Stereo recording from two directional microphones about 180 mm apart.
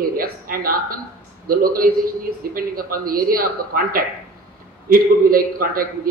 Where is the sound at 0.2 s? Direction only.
55° right (ahead or behind).